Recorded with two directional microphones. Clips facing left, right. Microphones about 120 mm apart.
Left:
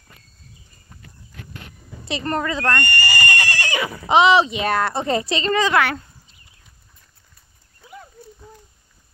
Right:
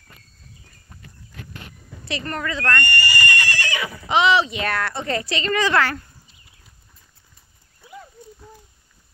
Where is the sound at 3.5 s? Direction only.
50° left (ahead or behind).